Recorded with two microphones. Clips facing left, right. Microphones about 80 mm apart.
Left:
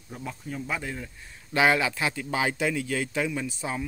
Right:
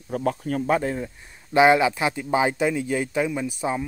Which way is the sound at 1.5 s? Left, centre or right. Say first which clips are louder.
Right 6 dB; right.